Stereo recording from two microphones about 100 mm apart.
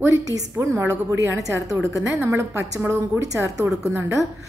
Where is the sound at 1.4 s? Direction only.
30° right (ahead or behind).